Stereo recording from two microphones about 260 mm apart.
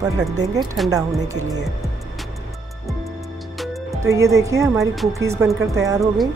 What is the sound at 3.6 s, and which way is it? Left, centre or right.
Music, centre.